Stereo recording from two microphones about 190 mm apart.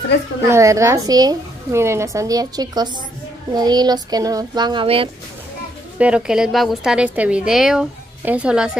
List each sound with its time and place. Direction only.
0.5 s a woman's voice: 15° right (ahead or behind)
5.9 s a woman's voice: 5° right (ahead or behind)